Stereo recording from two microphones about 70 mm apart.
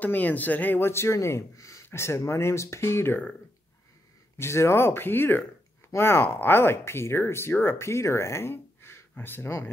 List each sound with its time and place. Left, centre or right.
0.0 s speech: left
4.4 s speech: left